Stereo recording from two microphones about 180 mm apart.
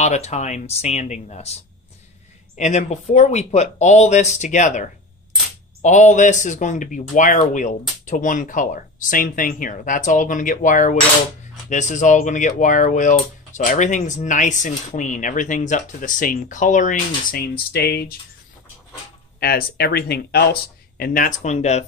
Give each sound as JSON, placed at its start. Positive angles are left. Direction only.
{"t": 0.0, "sound": "speech", "side_deg": 40}
{"t": 19.4, "sound": "speech", "side_deg": 60}
{"t": 21.0, "sound": "speech", "side_deg": 50}